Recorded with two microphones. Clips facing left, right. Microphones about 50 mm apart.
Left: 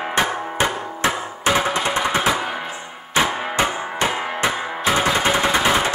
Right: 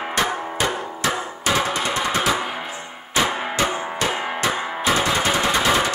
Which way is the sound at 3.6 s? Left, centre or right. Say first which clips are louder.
Left 3 dB; left.